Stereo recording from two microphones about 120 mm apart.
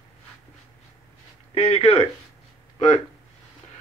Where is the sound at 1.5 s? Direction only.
55° left (ahead or behind).